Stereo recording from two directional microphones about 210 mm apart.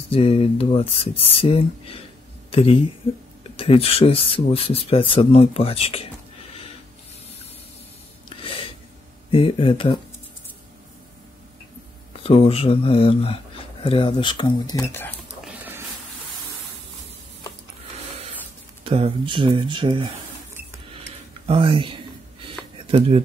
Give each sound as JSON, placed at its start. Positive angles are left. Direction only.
{"t": 0.1, "sound": "speech", "side_deg": 25}
{"t": 8.3, "sound": "a sound", "side_deg": 25}
{"t": 9.3, "sound": "speech", "side_deg": 25}
{"t": 12.1, "sound": "speech", "side_deg": 30}
{"t": 15.4, "sound": "a sound", "side_deg": -10}
{"t": 18.9, "sound": "speech", "side_deg": -25}
{"t": 21.5, "sound": "speech", "side_deg": -25}